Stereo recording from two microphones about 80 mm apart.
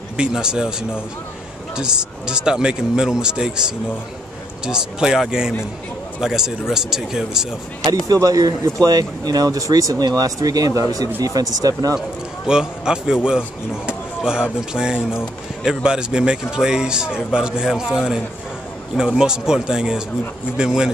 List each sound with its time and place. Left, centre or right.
0.2 s speech: centre
8.1 s speech: right
12.4 s speech: centre